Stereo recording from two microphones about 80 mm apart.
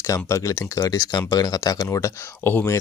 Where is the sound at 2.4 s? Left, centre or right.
Left.